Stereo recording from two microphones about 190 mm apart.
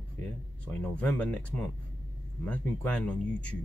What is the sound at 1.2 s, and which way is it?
Speech, 5° left (ahead or behind).